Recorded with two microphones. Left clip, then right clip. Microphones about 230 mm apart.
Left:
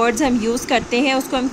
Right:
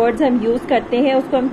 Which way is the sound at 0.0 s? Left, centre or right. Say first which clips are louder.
Right 2 dB; left.